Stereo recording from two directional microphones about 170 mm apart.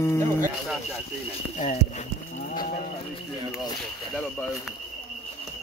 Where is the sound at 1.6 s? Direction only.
40° left (ahead or behind).